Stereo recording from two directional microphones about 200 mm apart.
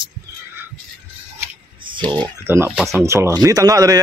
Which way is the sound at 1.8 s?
25° right (ahead or behind).